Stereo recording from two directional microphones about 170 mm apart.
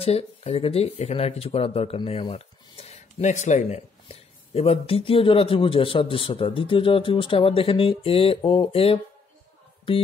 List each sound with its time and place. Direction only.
0.0 s speech: 35° left (ahead or behind)